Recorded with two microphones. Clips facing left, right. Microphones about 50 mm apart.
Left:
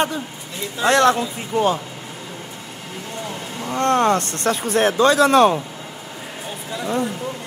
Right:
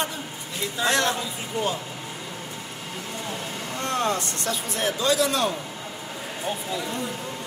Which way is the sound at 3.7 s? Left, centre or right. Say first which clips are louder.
Left 9 dB; left.